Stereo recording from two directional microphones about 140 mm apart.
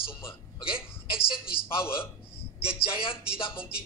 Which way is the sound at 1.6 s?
15° left (ahead or behind).